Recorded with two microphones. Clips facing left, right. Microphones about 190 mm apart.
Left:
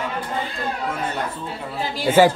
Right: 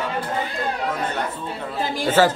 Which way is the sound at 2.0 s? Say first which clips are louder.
Left 3 dB; 10° left (ahead or behind).